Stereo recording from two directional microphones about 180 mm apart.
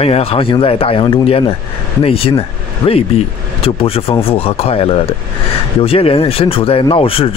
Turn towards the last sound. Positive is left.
turn(degrees=30)  # may be behind; listen again after turning